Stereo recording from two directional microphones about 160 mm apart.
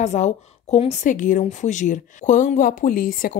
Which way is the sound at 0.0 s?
45° left (ahead or behind).